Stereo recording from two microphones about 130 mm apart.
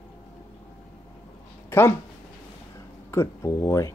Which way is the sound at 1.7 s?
15° left (ahead or behind).